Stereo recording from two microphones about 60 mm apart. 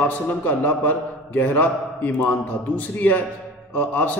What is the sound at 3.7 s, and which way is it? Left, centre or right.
Speech, left.